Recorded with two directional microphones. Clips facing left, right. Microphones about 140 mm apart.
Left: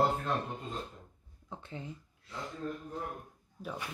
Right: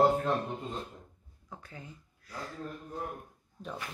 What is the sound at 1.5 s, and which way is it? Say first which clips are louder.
Speech: left 4 dB; 25° left (ahead or behind).